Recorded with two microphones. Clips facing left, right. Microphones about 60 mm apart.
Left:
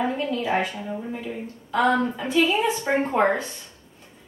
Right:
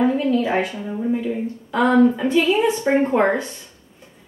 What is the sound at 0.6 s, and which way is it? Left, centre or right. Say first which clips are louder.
Speech: right 4 dB; centre.